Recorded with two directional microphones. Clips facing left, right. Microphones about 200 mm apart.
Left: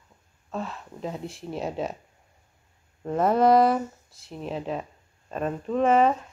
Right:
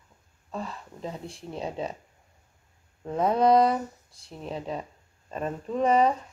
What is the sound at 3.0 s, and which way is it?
Speech, 5° left (ahead or behind).